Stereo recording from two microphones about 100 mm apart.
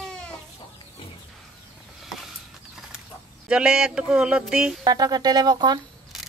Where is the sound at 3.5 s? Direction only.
10° right (ahead or behind).